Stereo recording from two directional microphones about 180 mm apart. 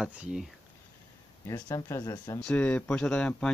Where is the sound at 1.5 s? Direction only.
15° left (ahead or behind).